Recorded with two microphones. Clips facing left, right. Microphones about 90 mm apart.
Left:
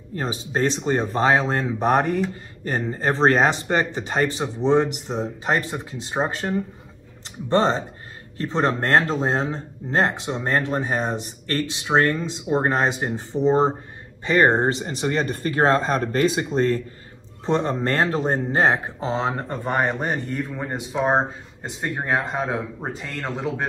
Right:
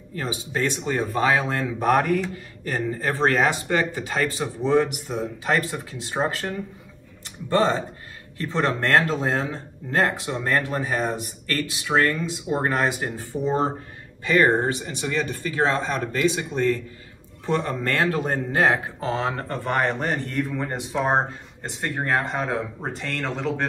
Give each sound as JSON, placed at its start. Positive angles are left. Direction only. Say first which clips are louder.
{"t": 0.1, "sound": "speech", "louder": "left 2 dB", "side_deg": 30}
{"t": 17.5, "sound": "speech", "louder": "left 2 dB", "side_deg": 25}